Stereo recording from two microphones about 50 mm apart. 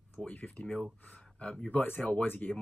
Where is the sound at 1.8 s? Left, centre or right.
Left.